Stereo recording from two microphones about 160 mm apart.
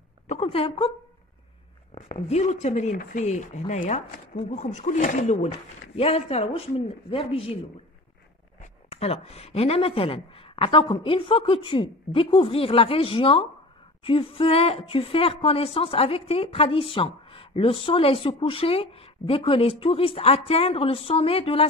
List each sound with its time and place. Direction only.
0.3 s speech: 40° left (ahead or behind)
2.0 s speech: 45° left (ahead or behind)
8.9 s speech: 40° left (ahead or behind)